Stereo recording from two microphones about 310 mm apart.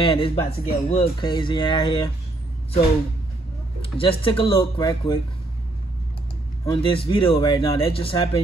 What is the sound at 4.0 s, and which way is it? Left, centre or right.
Speech, centre.